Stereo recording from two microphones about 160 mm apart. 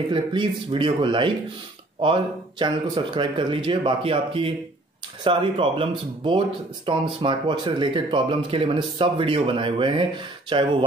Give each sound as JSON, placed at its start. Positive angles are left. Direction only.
{"t": 0.1, "sound": "a man's voice", "side_deg": -30}